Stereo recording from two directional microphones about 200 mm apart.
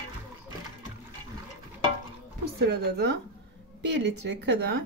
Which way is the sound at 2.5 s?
55° right (ahead or behind).